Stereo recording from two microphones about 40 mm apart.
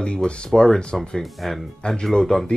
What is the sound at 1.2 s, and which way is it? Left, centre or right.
Speech, centre.